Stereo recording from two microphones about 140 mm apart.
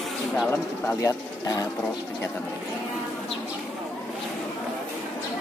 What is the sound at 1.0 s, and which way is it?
Speech, 25° left (ahead or behind).